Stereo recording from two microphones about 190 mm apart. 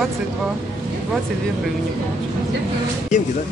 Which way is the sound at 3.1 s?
40° left (ahead or behind).